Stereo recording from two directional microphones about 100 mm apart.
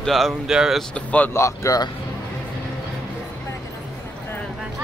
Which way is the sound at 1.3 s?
30° left (ahead or behind).